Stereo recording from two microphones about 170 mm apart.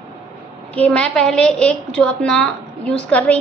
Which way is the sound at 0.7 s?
10° left (ahead or behind).